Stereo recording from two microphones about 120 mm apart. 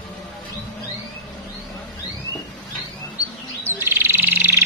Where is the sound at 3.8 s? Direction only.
20° right (ahead or behind).